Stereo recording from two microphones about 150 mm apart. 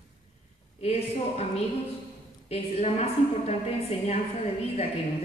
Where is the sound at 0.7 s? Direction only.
45° left (ahead or behind).